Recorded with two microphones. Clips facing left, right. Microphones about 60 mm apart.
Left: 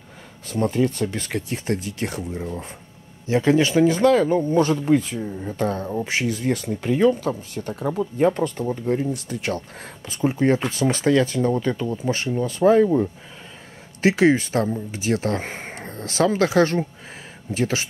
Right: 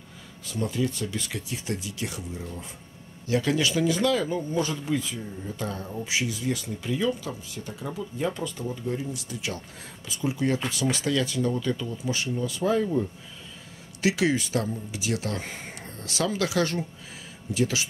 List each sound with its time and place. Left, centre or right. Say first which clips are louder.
0.5 s speech: left 7 dB; left
3.3 s speech: left 6 dB; left